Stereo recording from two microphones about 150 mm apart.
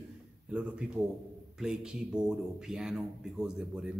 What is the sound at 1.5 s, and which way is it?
Speech, 5° right (ahead or behind).